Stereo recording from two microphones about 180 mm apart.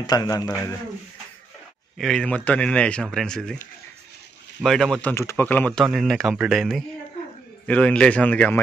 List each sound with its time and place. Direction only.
0.0 s a man's voice: 20° left (ahead or behind)
2.0 s speech: 5° left (ahead or behind)
5.1 s a man's voice: 15° left (ahead or behind)